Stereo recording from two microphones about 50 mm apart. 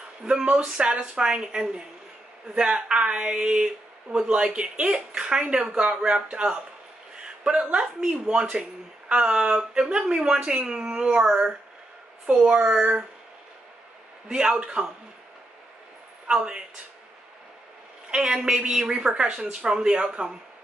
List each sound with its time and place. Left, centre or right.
0.2 s a woman's voice: centre
7.2 s a sound: centre
7.8 s a woman's voice: centre
14.3 s a woman's voice: right
16.3 s speech: centre
18.1 s speech: centre